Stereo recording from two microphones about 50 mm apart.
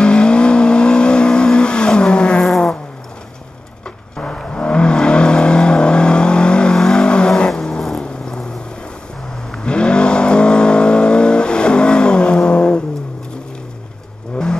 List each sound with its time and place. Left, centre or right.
0.0 s vehicle: centre
4.2 s vehicle: centre
8.0 s a sound: centre
9.5 s vehicle: centre